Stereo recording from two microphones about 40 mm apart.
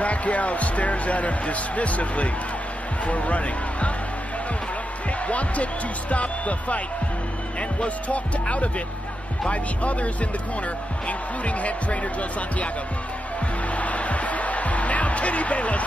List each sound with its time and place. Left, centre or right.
0.0 s speech: left
5.3 s speech: left
7.8 s speech: left
11.1 s speech: left
13.7 s music: left